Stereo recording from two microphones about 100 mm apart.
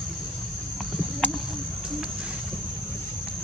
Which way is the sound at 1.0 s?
5° left (ahead or behind).